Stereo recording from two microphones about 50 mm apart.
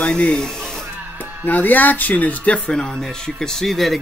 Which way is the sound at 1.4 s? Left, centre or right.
Left.